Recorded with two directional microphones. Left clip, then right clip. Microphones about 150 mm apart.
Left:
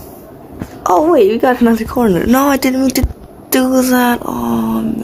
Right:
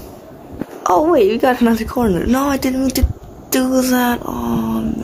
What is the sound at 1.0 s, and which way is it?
Speech, centre (ahead or behind).